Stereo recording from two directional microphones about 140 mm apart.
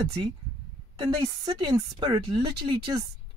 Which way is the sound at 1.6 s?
30° right (ahead or behind).